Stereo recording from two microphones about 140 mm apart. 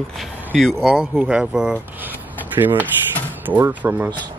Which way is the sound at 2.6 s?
25° right (ahead or behind).